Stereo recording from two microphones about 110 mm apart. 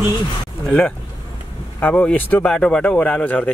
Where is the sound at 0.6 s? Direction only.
10° left (ahead or behind).